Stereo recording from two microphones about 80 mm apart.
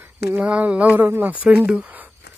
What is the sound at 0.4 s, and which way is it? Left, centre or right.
Speech, centre.